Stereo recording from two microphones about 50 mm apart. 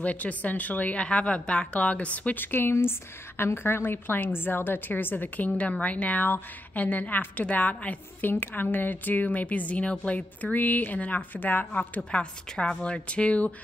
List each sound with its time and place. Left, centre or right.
0.0 s a woman's voice: left
2.4 s a woman's voice: left
12.0 s a woman's voice: left